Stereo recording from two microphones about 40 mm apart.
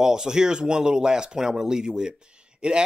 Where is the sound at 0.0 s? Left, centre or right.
Centre.